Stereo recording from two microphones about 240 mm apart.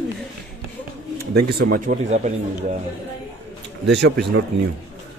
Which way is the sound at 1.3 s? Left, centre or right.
Right.